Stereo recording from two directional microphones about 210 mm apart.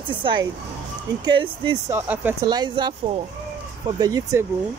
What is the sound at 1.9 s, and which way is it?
Speech, 10° right (ahead or behind).